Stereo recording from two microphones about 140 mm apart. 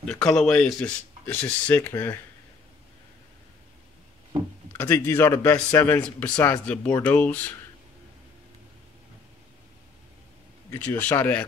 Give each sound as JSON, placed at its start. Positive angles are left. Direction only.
{"t": 0.2, "sound": "speech", "side_deg": 5}
{"t": 4.7, "sound": "speech", "side_deg": 15}
{"t": 10.7, "sound": "speech", "side_deg": 15}